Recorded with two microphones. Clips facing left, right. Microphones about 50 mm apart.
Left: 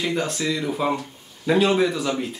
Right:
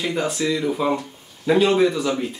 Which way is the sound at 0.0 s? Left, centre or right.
Centre.